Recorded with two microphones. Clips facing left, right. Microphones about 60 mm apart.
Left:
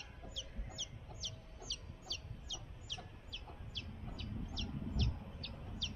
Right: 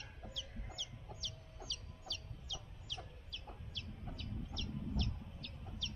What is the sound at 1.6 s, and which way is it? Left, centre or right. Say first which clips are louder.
Chicken: right 1 dB; right.